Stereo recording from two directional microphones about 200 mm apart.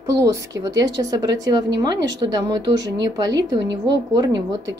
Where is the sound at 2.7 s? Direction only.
65° right (ahead or behind).